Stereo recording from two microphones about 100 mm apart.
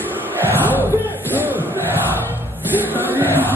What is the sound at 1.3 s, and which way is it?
Crowd, 20° right (ahead or behind).